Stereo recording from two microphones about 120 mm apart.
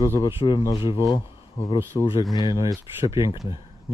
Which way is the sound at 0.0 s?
30° left (ahead or behind).